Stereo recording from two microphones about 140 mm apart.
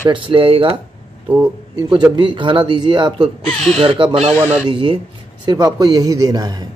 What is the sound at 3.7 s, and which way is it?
A man's voice, 40° right (ahead or behind).